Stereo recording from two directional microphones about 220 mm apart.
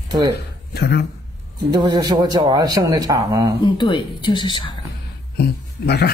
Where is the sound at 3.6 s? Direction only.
20° left (ahead or behind).